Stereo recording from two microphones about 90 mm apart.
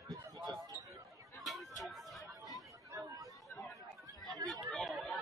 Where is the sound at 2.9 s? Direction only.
40° right (ahead or behind).